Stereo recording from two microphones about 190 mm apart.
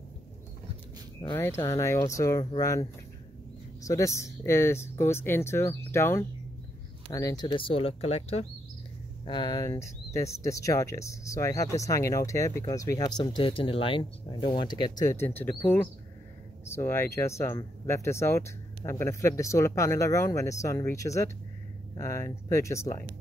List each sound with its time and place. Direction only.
1.3 s speech: 15° left (ahead or behind)
16.6 s speech: 15° left (ahead or behind)